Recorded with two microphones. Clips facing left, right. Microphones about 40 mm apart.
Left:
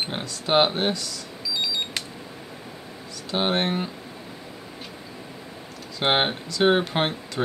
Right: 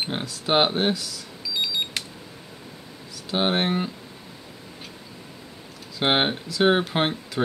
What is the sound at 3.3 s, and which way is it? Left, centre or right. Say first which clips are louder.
Speech: right 1 dB; centre.